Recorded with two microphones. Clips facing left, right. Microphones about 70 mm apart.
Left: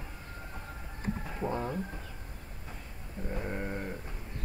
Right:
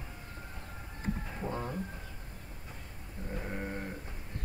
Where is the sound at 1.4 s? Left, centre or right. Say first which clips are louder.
Left 4 dB; left.